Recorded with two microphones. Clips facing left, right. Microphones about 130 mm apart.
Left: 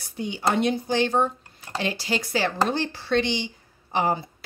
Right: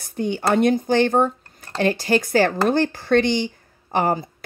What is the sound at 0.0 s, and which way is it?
Speech, 50° right (ahead or behind).